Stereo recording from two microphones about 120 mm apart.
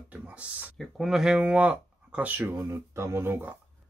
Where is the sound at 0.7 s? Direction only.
Centre (ahead or behind).